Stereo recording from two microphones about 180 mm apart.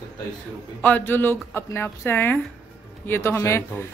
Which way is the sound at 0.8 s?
10° left (ahead or behind).